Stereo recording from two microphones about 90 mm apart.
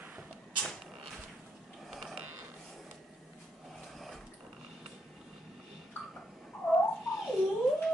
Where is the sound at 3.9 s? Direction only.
Centre (ahead or behind).